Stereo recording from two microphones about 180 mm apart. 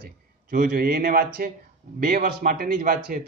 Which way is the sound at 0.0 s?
50° right (ahead or behind).